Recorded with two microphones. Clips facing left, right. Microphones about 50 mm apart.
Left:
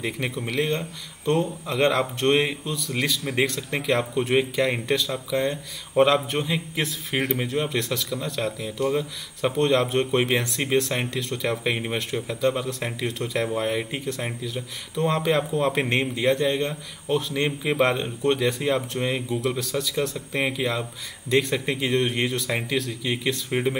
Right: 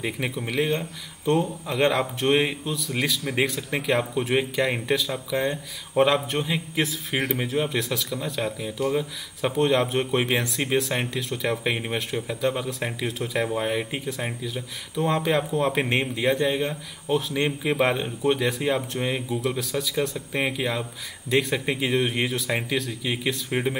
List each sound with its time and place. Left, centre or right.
0.0 s speech: centre